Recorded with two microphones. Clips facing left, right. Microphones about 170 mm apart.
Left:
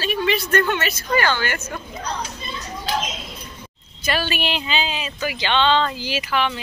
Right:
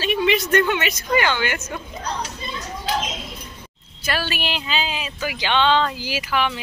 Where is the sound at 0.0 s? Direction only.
20° right (ahead or behind).